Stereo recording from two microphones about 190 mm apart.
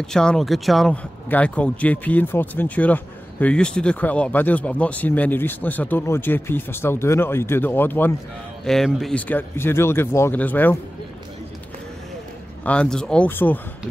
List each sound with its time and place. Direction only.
0.0 s speech: 5° left (ahead or behind)
12.6 s speech: 5° left (ahead or behind)